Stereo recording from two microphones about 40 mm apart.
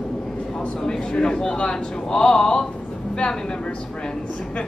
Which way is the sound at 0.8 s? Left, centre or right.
Centre.